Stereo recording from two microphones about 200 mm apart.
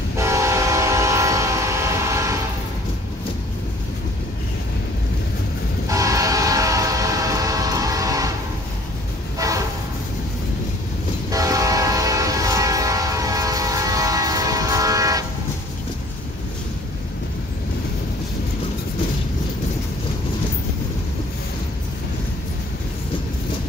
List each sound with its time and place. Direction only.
0.2 s train: 15° right (ahead or behind)
5.9 s train: 15° right (ahead or behind)
11.3 s train: 15° right (ahead or behind)